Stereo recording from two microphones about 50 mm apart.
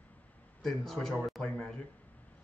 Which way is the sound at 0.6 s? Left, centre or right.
Centre.